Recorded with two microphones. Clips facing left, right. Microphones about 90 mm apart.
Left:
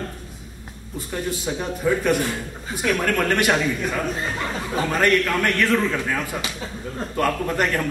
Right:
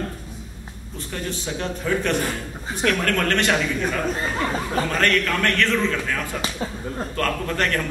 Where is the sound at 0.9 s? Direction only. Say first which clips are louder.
Left 3 dB; 10° left (ahead or behind).